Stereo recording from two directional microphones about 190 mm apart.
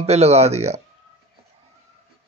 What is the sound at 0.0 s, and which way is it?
Speech, 35° right (ahead or behind).